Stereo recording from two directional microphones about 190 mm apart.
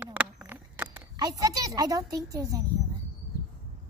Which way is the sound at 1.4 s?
20° right (ahead or behind).